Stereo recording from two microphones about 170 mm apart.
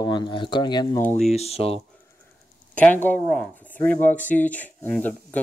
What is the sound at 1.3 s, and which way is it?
Speech, 35° left (ahead or behind).